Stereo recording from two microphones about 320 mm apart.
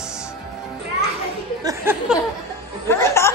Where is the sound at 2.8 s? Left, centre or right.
Centre.